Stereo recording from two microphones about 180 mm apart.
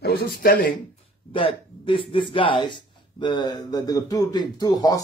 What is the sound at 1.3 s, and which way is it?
Speech, 30° left (ahead or behind).